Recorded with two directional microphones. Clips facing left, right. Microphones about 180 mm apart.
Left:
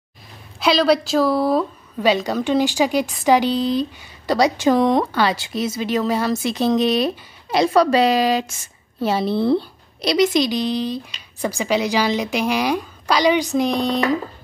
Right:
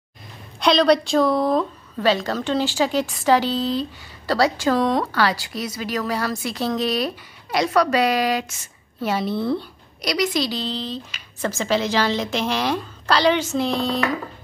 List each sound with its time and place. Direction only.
0.6 s a woman's voice: 5° left (ahead or behind)